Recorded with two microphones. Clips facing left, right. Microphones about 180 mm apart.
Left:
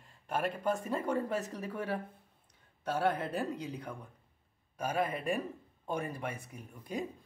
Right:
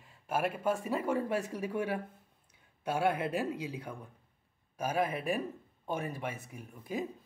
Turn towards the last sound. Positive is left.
turn(degrees=-5)  # may be behind; listen again after turning